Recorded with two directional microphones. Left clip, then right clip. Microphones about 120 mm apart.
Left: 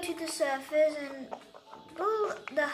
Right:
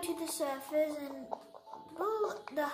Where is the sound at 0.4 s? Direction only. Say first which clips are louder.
Left 7 dB; 30° right (ahead or behind).